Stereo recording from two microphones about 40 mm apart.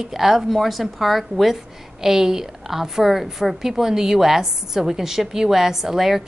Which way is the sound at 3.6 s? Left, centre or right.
Centre.